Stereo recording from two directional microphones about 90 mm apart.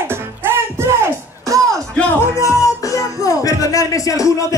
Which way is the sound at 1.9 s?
15° left (ahead or behind).